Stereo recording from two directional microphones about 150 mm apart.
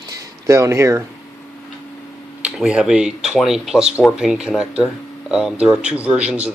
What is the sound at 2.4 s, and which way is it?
Speech, 5° right (ahead or behind).